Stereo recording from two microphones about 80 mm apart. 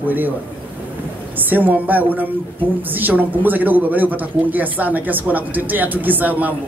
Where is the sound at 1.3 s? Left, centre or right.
Right.